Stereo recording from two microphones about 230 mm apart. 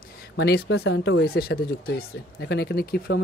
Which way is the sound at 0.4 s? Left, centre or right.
Left.